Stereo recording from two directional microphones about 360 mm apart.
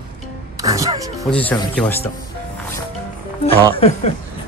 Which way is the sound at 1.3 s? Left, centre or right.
Centre.